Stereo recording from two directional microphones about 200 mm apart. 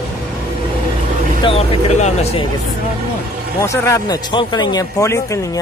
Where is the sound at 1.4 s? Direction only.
30° left (ahead or behind).